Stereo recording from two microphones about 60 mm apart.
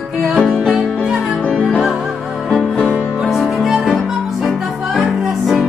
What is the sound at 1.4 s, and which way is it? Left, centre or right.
Music, centre.